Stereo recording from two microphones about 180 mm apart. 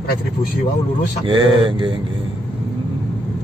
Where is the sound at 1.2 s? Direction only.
30° right (ahead or behind).